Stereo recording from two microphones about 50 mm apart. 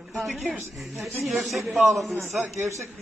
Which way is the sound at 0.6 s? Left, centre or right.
Right.